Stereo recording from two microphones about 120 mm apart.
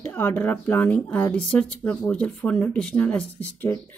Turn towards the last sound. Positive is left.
turn(degrees=15)  # may be behind; listen again after turning